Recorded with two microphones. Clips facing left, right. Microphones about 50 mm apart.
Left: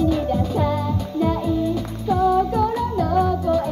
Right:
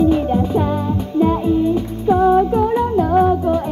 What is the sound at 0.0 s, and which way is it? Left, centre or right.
Music, right.